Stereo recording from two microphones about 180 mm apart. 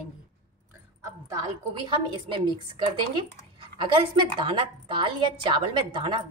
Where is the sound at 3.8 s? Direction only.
30° right (ahead or behind).